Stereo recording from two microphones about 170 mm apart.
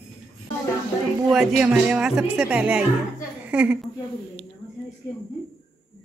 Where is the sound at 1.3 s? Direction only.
Centre (ahead or behind).